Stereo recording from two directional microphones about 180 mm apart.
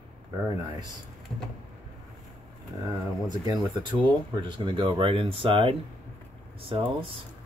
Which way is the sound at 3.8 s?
25° right (ahead or behind).